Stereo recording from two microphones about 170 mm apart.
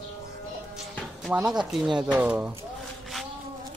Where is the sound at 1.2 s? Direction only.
5° right (ahead or behind).